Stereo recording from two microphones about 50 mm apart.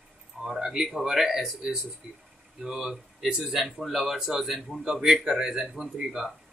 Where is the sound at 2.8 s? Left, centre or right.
Centre.